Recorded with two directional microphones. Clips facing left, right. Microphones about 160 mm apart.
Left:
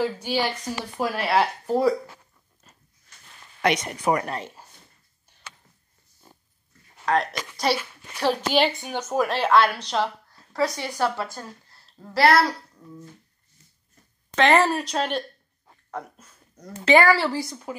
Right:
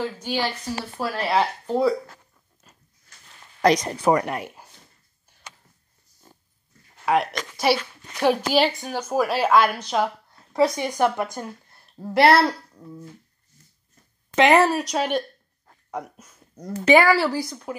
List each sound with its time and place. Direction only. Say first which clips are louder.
0.0 s a woman's voice: left 1 dB; 10° left (ahead or behind)
1.2 s speech: right 1 dB; 5° left (ahead or behind)
3.6 s speech: right 4 dB; 35° right (ahead or behind)
4.3 s speech: right 2 dB; 15° right (ahead or behind)
7.3 s speech: right 3 dB; centre (ahead or behind)
10.3 s a sound: right 6 dB; 25° right (ahead or behind)
10.8 s a woman's voice: right 4 dB; 20° right (ahead or behind)
14.3 s speech: right 2 dB; 15° right (ahead or behind)